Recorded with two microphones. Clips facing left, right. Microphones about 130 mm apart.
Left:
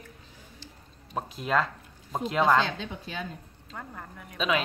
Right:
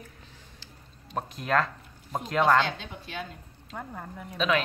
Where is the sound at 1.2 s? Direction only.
Centre (ahead or behind).